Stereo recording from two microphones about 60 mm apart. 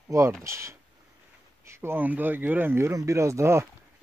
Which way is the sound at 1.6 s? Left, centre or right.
Right.